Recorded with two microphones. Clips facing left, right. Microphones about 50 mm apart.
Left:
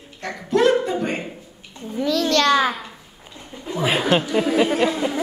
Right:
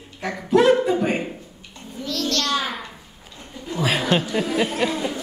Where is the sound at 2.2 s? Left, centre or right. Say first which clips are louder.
Left 6 dB; left.